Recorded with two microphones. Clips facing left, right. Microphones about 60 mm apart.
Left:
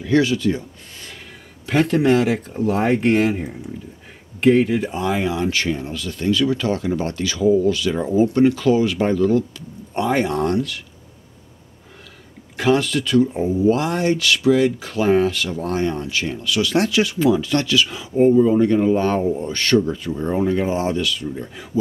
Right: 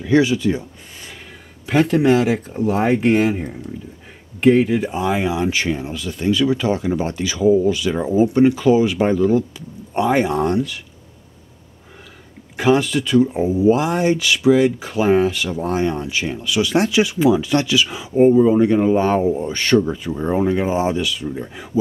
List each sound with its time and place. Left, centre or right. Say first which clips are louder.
0.0 s speech: right 2 dB; centre
1.7 s speech: right 1 dB; centre
12.5 s speech: right 2 dB; centre